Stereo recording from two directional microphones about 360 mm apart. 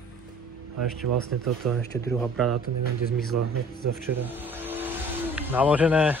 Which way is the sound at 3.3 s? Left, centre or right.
Right.